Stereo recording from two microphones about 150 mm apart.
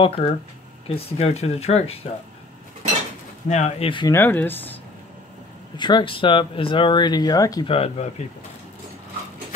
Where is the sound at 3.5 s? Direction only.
50° left (ahead or behind).